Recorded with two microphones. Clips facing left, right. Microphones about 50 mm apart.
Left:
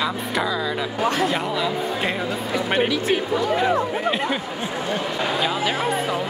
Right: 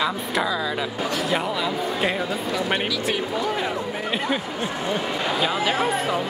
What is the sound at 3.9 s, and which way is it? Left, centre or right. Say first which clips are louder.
Speech: left 2 dB; centre.